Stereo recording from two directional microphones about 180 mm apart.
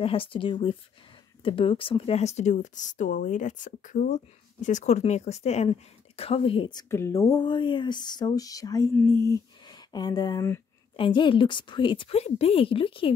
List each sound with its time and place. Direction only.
0.0 s a woman's voice: 30° left (ahead or behind)